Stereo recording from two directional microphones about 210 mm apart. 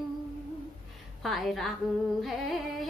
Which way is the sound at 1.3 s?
Centre (ahead or behind).